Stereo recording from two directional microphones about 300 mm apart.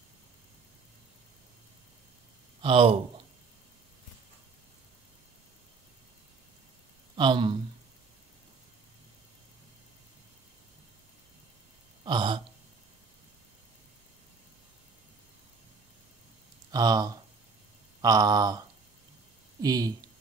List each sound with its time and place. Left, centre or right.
2.6 s speech: centre
7.2 s speech: centre
12.0 s a sound: centre
16.7 s speech: centre
19.6 s speech: centre